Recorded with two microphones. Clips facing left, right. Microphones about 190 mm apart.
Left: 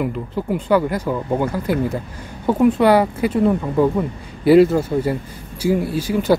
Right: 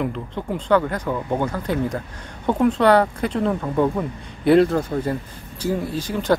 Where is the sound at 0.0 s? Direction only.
5° left (ahead or behind).